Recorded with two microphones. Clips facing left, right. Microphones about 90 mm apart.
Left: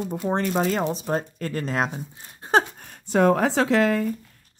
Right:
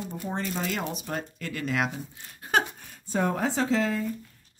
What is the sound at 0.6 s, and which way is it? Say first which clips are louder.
Speech: left 8 dB; 35° left (ahead or behind).